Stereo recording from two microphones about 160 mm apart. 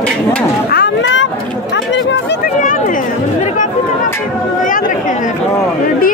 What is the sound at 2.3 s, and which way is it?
Chatter, 65° left (ahead or behind).